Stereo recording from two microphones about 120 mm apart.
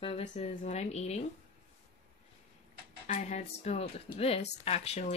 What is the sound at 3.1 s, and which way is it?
Speech, 65° left (ahead or behind).